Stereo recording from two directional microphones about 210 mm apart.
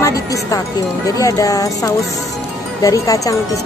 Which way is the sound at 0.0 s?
15° left (ahead or behind).